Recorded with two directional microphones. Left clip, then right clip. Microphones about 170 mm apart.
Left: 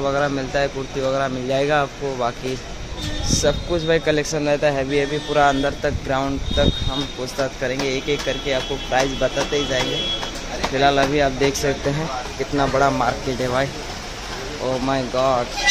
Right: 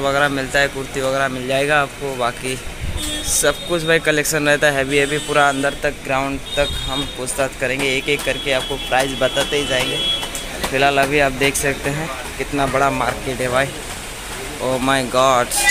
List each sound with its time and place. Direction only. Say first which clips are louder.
0.0 s speech: right 3 dB; 5° right (ahead or behind)
3.3 s speech: right 2 dB; centre (ahead or behind)
14.9 s speech: right 5 dB; 15° right (ahead or behind)